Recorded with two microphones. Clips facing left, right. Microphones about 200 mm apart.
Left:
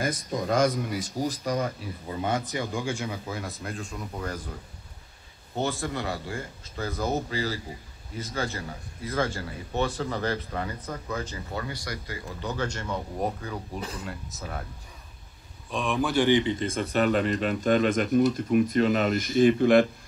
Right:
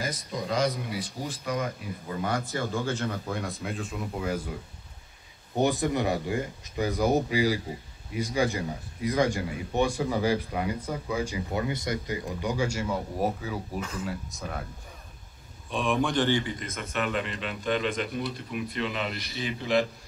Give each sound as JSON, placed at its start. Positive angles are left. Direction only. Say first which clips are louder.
{"t": 0.0, "sound": "a man's voice", "louder": "left 4 dB", "side_deg": 50}
{"t": 2.2, "sound": "speech", "louder": "left 1 dB", "side_deg": 20}
{"t": 5.6, "sound": "a man's voice", "louder": "right 4 dB", "side_deg": -20}
{"t": 13.7, "sound": "speech", "louder": "right 1 dB", "side_deg": 35}
{"t": 14.0, "sound": "speech", "louder": "right 3 dB", "side_deg": 0}
{"t": 15.7, "sound": "speech", "louder": "even", "side_deg": 0}
{"t": 16.3, "sound": "a man's voice", "louder": "left 5 dB", "side_deg": 20}